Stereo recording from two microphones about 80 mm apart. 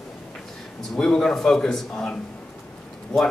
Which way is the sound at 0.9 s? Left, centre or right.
Centre.